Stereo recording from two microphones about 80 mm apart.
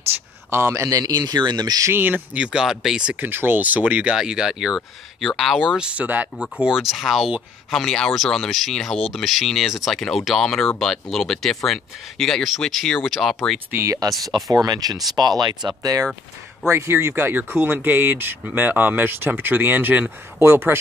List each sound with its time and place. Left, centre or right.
0.1 s speech: centre
0.5 s a man's voice: right
0.8 s speech: right
1.9 s speech: right; by 3.2 s centre
3.2 s speech: right
4.2 s speech: centre
5.9 s speech: centre
6.6 s speech: centre
13.8 s speech: right
16.6 s speech: right